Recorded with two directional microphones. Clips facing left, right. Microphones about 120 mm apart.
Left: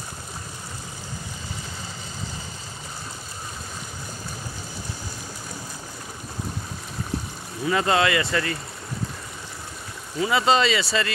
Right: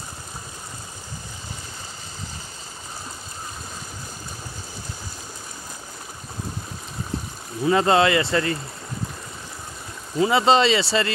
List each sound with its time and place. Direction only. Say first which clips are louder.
7.6 s speech: right 4 dB; 25° right (ahead or behind)
10.1 s speech: right 3 dB; 25° right (ahead or behind)